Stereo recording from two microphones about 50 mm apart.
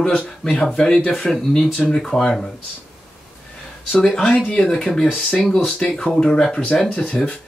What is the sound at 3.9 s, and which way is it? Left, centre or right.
Speech, centre.